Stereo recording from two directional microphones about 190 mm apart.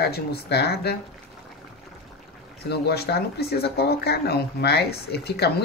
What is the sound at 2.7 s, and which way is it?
Speech, 60° left (ahead or behind).